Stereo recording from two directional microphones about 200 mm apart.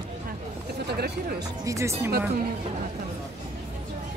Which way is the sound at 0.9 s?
55° right (ahead or behind).